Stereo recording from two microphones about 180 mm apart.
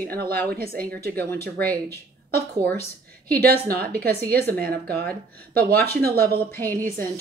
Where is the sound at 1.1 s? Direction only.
10° left (ahead or behind).